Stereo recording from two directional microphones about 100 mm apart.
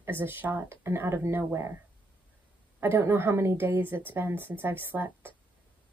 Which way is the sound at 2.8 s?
25° right (ahead or behind).